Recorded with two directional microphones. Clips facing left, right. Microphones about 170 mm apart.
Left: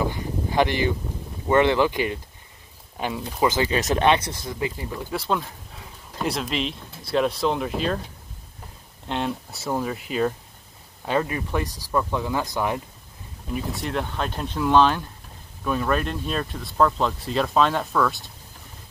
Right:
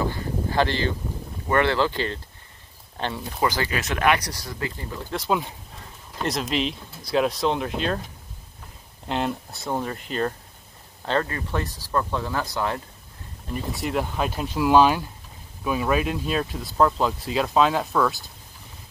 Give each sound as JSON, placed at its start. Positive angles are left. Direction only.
{"t": 0.0, "sound": "a sound", "side_deg": 15}
{"t": 1.5, "sound": "speech", "side_deg": 15}
{"t": 3.4, "sound": "speech", "side_deg": 20}
{"t": 3.7, "sound": "speech", "side_deg": 30}
{"t": 5.1, "sound": "speech", "side_deg": 5}
{"t": 5.8, "sound": "a sound", "side_deg": 5}
{"t": 6.5, "sound": "speech", "side_deg": 0}
{"t": 9.0, "sound": "speech", "side_deg": 0}
{"t": 13.5, "sound": "speech", "side_deg": 0}